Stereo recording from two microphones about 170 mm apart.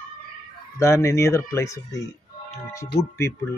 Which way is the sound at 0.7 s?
15° left (ahead or behind).